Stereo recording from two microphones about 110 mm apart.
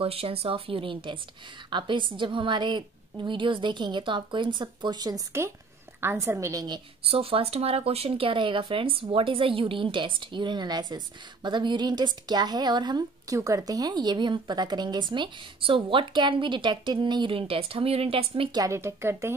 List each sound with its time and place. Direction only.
0.0 s speech: 60° right (ahead or behind); by 5.2 s 35° right (ahead or behind)
5.9 s a woman's voice: 25° right (ahead or behind)
7.1 s speech: 60° right (ahead or behind)
18.5 s a woman's voice: 30° right (ahead or behind)